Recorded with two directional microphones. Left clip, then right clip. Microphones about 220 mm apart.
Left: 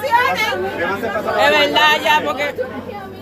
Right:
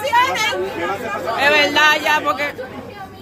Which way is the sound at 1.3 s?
20° right (ahead or behind).